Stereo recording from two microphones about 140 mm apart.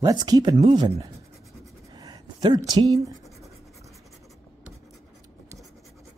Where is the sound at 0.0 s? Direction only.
30° right (ahead or behind).